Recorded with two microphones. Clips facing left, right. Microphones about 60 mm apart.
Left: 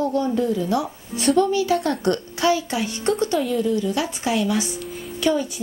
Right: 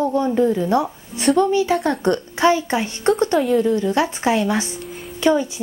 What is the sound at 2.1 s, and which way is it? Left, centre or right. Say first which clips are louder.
A woman's voice: right 4 dB; right.